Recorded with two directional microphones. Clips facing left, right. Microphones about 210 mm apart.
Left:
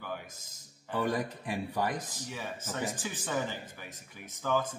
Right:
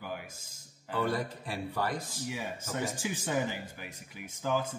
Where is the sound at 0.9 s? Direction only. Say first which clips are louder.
Even; 15° left (ahead or behind).